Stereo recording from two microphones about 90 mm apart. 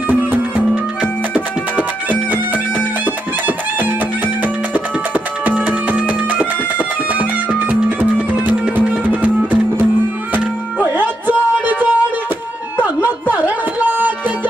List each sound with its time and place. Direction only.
0.1 s music: 20° right (ahead or behind)
4.4 s music: 15° right (ahead or behind)